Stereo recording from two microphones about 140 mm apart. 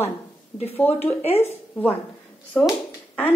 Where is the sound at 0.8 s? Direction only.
45° left (ahead or behind).